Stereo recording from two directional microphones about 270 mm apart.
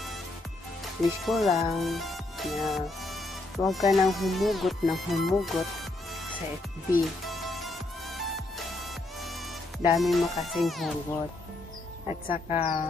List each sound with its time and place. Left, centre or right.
1.2 s speech: centre
6.9 s music: centre
9.9 s speech: centre
12.1 s speech: left